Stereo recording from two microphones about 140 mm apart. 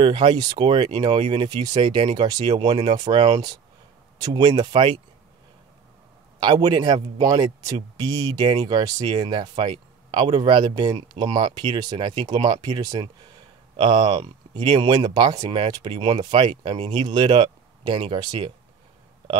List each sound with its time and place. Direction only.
0.0 s speech: 35° right (ahead or behind)
6.4 s speech: 35° right (ahead or behind)